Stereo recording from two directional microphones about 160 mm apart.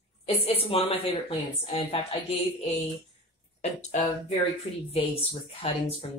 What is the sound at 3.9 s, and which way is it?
Speech, 50° left (ahead or behind).